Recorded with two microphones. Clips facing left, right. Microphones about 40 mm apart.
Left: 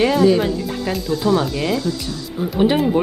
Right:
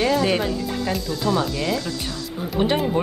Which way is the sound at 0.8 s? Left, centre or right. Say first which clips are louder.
Left 6 dB; centre.